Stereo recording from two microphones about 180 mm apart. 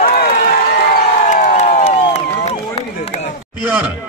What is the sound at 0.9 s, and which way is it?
Crowd, 45° left (ahead or behind).